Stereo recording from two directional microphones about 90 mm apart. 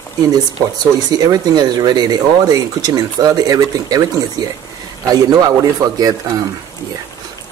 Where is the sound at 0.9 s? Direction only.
45° right (ahead or behind).